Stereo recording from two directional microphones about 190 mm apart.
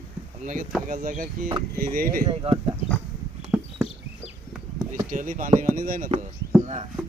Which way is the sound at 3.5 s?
5° right (ahead or behind).